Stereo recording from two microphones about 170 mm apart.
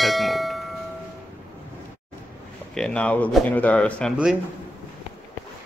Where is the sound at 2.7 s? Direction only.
5° left (ahead or behind).